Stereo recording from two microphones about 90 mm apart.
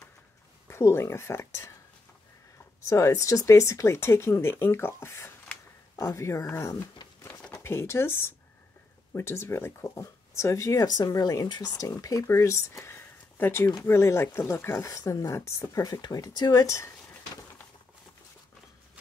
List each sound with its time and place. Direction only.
0.7 s speech: 30° left (ahead or behind)
2.9 s speech: 35° left (ahead or behind)
6.7 s a sound: 40° left (ahead or behind)
7.6 s speech: 30° left (ahead or behind); by 11.7 s 50° left (ahead or behind)
11.7 s speech: 40° left (ahead or behind)